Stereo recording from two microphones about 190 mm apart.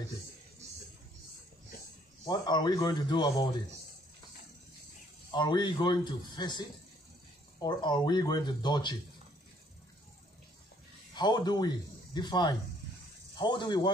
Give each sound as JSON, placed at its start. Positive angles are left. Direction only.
{"t": 2.2, "sound": "speech", "side_deg": 20}
{"t": 5.3, "sound": "speech", "side_deg": 25}
{"t": 7.6, "sound": "speech", "side_deg": 25}
{"t": 11.1, "sound": "speech", "side_deg": 20}